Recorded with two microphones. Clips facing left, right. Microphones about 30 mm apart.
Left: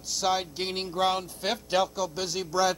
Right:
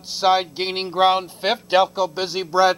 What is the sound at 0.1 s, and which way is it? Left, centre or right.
A man's voice, right.